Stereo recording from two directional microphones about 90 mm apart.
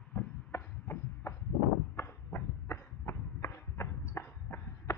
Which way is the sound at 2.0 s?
30° left (ahead or behind).